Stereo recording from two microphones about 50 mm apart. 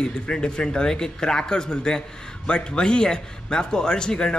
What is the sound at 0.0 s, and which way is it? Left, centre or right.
Speech, centre.